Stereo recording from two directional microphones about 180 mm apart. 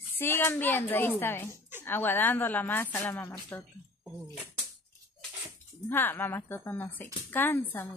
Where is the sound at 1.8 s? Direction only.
10° left (ahead or behind).